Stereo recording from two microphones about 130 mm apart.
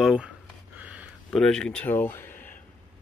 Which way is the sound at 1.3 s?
5° left (ahead or behind).